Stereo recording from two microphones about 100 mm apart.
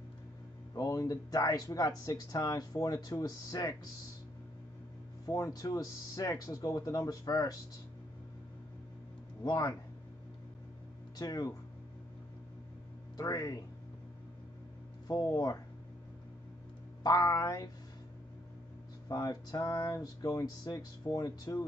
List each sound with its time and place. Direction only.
0.7 s speech: 35° left (ahead or behind)
5.2 s speech: 35° left (ahead or behind)
9.4 s speech: 35° left (ahead or behind)
11.1 s speech: 40° left (ahead or behind)
13.2 s speech: 35° left (ahead or behind)
15.0 s speech: 35° left (ahead or behind)
17.0 s speech: 40° left (ahead or behind)
19.0 s speech: 35° left (ahead or behind)